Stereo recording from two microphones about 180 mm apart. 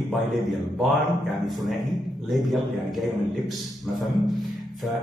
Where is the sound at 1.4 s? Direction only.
Centre (ahead or behind).